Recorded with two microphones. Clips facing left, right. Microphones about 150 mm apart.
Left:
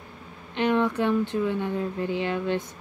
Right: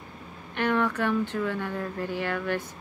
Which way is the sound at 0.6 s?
20° left (ahead or behind).